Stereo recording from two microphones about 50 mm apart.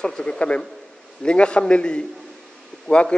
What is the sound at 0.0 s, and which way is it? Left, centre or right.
A man's voice, centre.